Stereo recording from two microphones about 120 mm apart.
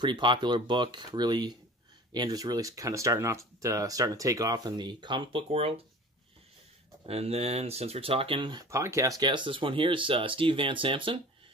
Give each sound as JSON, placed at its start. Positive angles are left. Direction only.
{"t": 0.0, "sound": "speech", "side_deg": -40}
{"t": 7.1, "sound": "speech", "side_deg": -60}
{"t": 8.6, "sound": "speech", "side_deg": -25}
{"t": 9.2, "sound": "speech", "side_deg": -40}